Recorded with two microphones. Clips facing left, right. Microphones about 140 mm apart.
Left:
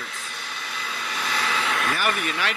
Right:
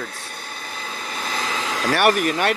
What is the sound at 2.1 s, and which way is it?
Speech, 35° right (ahead or behind).